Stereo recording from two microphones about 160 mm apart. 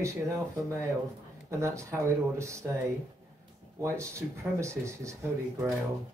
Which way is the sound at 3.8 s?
15° right (ahead or behind).